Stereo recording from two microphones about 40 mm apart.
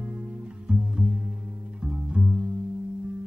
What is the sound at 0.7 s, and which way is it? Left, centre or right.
Music, right.